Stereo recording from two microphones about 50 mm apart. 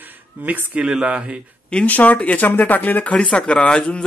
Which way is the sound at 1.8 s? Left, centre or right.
Left.